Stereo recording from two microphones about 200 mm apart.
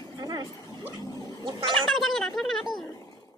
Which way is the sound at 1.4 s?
25° right (ahead or behind).